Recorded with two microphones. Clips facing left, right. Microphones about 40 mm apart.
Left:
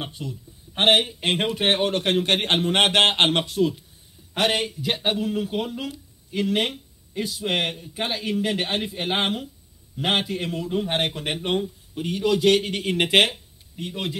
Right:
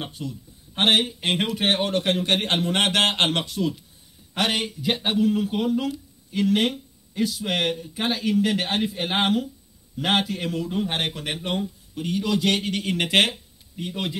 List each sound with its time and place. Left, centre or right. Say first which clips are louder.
0.0 s speech: even; centre
1.5 s speech: left 2 dB; left
1.9 s a man's voice: left 1 dB; left
4.3 s speech: left 2 dB; centre
7.7 s speech: right 2 dB; centre
13.3 s a sound: right 2 dB; centre